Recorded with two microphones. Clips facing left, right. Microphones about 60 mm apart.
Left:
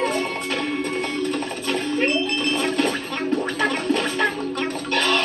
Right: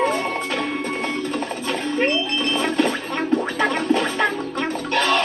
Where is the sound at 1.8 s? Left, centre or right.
Right.